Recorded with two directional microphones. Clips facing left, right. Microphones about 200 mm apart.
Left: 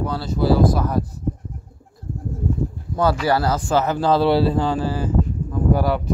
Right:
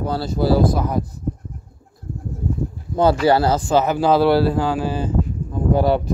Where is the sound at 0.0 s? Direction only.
35° right (ahead or behind).